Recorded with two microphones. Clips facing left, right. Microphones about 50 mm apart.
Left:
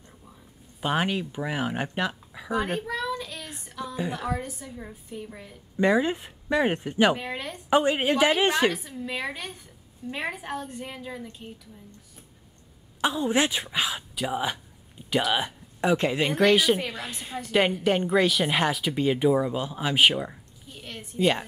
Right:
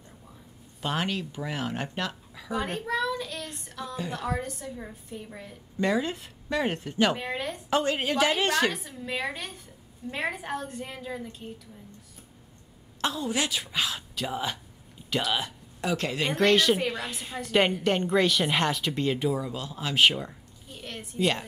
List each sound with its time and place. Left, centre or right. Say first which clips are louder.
0.7 s speech: left 4 dB; centre
2.9 s child singing: right 2 dB; centre
4.0 s speech: left 1 dB; centre
5.8 s a woman's voice: left 4 dB; centre
7.2 s speech: right 1 dB; centre
7.7 s a woman's voice: left 4 dB; centre
8.7 s speech: left 1 dB; centre
13.0 s a woman's voice: left 5 dB; left